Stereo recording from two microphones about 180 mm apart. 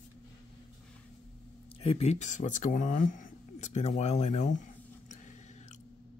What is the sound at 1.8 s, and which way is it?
Speech, 35° left (ahead or behind).